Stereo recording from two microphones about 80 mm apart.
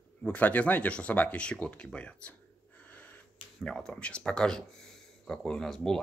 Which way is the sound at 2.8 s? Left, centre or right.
Centre.